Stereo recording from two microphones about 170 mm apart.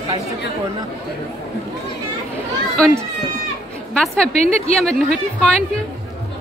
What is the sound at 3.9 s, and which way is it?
Speech, 5° left (ahead or behind).